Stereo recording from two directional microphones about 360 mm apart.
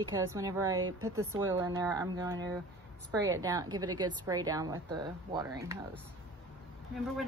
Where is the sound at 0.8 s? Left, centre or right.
Right.